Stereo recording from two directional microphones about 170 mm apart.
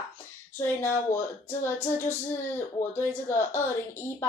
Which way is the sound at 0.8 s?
15° left (ahead or behind).